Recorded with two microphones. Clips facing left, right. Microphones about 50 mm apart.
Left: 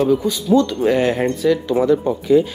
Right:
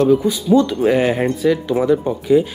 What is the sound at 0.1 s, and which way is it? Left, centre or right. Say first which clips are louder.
Speech: right 2 dB; centre.